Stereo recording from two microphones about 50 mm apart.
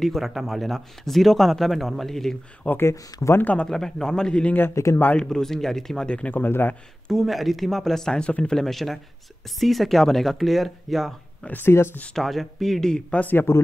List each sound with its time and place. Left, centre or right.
0.0 s speech: centre
2.8 s speech: left
3.5 s a man's voice: centre
4.8 s speech: left
5.3 s a man's voice: centre
6.0 s speech: left
6.3 s speech: left
7.1 s speech: centre; by 8.5 s left
8.5 s speech: centre
11.6 s speech: left
12.2 s speech: centre
13.1 s speech: left